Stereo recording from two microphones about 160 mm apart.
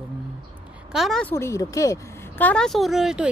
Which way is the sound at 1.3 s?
15° left (ahead or behind).